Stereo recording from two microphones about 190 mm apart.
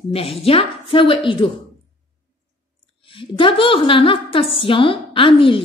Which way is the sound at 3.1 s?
25° left (ahead or behind).